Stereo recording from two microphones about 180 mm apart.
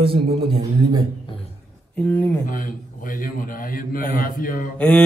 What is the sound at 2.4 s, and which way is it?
A man's voice, 50° left (ahead or behind).